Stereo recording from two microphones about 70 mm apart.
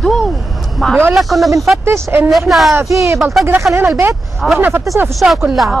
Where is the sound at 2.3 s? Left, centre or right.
Centre.